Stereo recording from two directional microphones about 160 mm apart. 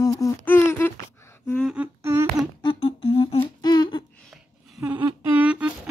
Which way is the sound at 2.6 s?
35° left (ahead or behind).